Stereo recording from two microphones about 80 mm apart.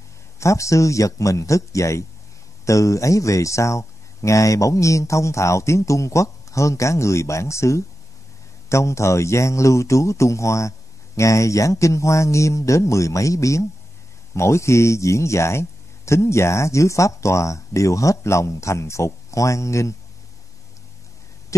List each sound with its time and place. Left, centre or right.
0.4 s speech: left